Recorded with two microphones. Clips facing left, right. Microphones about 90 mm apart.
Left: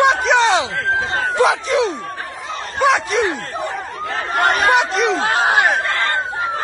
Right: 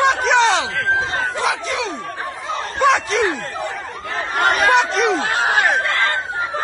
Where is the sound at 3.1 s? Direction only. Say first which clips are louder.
Even; 20° left (ahead or behind).